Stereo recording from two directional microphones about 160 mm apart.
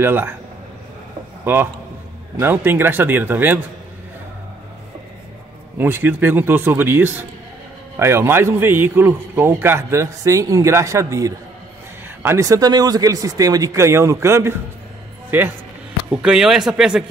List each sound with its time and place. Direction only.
0.0 s a man's voice: 15° right (ahead or behind)
1.4 s a man's voice: 15° right (ahead or behind)
5.8 s a man's voice: 15° right (ahead or behind)